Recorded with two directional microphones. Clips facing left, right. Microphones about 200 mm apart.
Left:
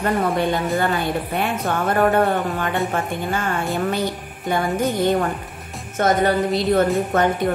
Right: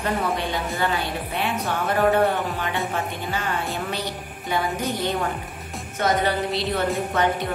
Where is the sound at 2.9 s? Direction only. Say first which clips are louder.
Left 4 dB; 50° left (ahead or behind).